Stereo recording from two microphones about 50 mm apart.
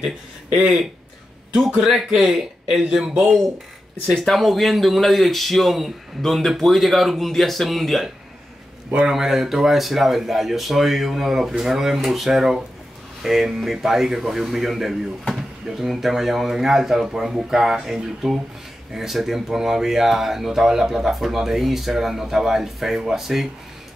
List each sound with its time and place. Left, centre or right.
0.5 s speech: centre
1.8 s speech: centre
4.1 s a man's voice: centre
9.1 s a man's voice: centre